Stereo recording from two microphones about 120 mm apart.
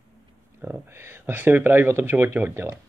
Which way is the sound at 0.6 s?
20° right (ahead or behind).